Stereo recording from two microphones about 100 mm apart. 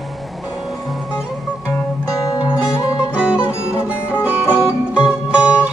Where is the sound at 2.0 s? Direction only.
35° left (ahead or behind).